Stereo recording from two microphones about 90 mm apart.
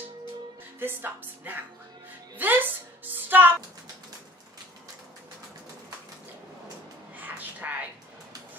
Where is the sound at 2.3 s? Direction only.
20° right (ahead or behind).